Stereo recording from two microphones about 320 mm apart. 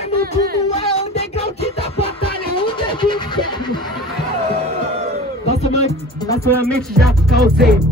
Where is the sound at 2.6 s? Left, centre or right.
Centre.